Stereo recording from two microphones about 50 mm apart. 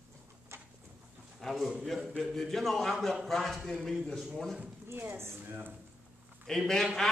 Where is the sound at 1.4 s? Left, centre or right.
Centre.